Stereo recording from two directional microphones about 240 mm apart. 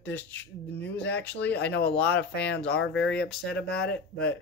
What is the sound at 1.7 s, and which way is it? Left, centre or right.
Speech, left.